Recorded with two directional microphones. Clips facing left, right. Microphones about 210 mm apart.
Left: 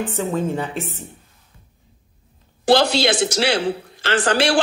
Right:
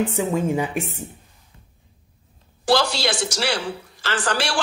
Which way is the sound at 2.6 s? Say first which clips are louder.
Left 4 dB; 20° left (ahead or behind).